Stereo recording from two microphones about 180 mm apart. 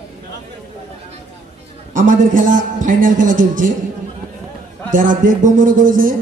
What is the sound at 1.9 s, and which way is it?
A man's voice, 45° right (ahead or behind).